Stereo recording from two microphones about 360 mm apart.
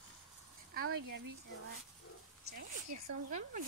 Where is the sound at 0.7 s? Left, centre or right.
Right.